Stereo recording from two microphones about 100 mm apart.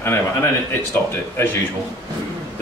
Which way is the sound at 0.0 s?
25° left (ahead or behind).